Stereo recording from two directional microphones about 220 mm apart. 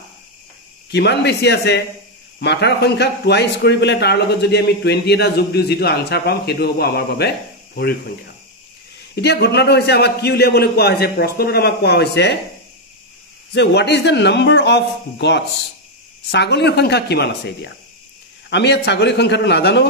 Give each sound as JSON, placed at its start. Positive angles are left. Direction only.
{"t": 0.8, "sound": "speech", "side_deg": 50}
{"t": 9.1, "sound": "speech", "side_deg": 50}
{"t": 13.5, "sound": "speech", "side_deg": 50}